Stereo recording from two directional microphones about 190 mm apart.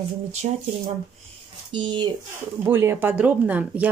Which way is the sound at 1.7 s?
25° right (ahead or behind).